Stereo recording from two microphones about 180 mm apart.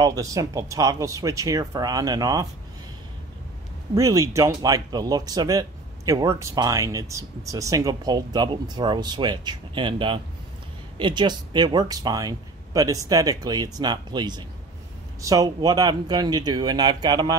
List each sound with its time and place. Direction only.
0.0 s speech: 20° right (ahead or behind)
3.9 s speech: 20° right (ahead or behind)